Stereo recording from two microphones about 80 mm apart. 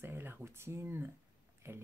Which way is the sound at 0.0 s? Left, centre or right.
Right.